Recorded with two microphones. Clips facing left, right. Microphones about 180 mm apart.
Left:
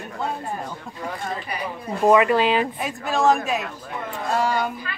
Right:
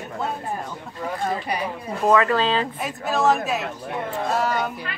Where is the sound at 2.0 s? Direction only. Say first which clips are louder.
Left 2 dB; 15° left (ahead or behind).